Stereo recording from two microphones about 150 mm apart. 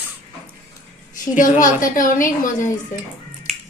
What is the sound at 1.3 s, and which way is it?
A woman's voice, 60° left (ahead or behind).